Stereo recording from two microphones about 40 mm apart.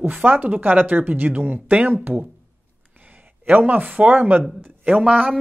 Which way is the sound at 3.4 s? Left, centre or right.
Right.